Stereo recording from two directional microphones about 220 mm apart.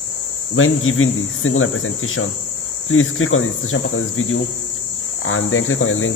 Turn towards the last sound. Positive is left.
turn(degrees=65)  # may be behind; listen again after turning